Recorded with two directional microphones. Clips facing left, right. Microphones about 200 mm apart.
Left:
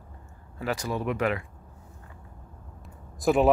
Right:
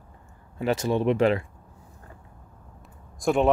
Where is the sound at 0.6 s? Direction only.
25° right (ahead or behind).